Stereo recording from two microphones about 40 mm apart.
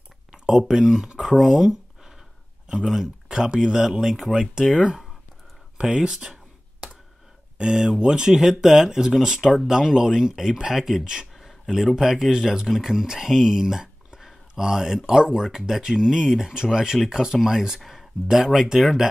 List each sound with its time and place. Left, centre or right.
0.3 s speech: centre
1.2 s a sound: centre
2.9 s speech: centre
5.9 s speech: centre
7.5 s speech: centre
11.3 s a sound: centre
11.9 s speech: centre
15.4 s speech: centre